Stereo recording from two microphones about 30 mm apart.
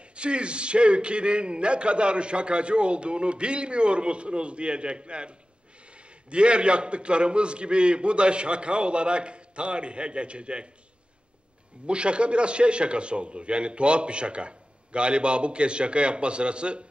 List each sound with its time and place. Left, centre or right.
0.1 s a man's voice: right
6.3 s a man's voice: right
11.8 s a man's voice: right